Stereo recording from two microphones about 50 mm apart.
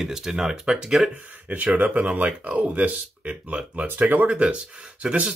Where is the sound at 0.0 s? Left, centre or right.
Centre.